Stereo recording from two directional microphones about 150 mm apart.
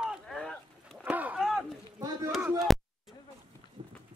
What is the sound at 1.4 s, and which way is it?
Run, centre (ahead or behind).